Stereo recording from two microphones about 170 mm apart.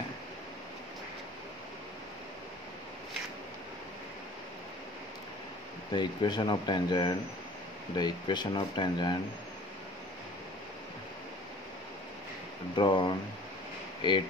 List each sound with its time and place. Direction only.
5.9 s speech: 25° left (ahead or behind)
12.7 s speech: 30° left (ahead or behind)